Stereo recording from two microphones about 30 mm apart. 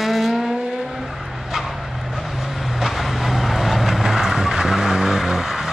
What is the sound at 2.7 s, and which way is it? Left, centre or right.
Vehicle, centre.